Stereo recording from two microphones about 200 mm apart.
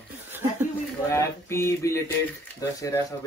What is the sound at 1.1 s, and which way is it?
Speech, 15° left (ahead or behind).